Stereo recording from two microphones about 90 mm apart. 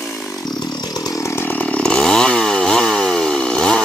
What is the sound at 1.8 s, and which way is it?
Chainsaw, 5° left (ahead or behind).